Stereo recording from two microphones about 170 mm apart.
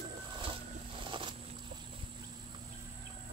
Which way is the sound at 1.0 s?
30° right (ahead or behind).